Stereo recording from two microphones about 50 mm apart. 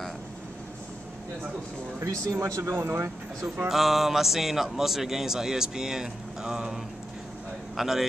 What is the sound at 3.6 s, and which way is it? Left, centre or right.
A man's voice, centre.